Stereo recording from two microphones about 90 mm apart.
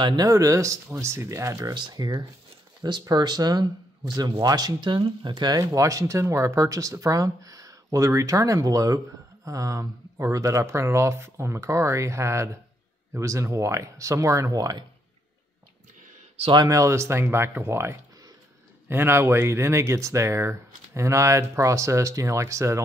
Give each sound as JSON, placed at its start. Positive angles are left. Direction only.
{"t": 0.2, "sound": "speech", "side_deg": -40}
{"t": 1.7, "sound": "speech", "side_deg": -50}
{"t": 5.8, "sound": "speech", "side_deg": -40}
{"t": 16.6, "sound": "speech", "side_deg": -35}